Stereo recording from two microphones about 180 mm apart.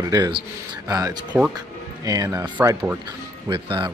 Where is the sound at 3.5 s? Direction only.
25° right (ahead or behind).